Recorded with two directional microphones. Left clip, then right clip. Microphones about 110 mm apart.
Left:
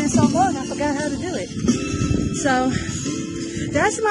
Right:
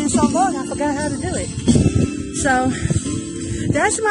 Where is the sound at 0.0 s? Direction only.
15° right (ahead or behind).